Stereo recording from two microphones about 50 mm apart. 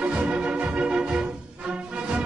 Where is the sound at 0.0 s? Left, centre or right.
Right.